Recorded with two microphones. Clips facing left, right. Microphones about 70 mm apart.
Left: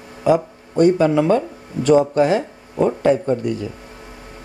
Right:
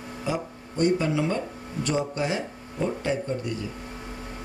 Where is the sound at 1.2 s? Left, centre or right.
Left.